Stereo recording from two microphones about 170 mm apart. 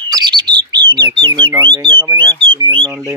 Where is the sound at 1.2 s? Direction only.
30° right (ahead or behind).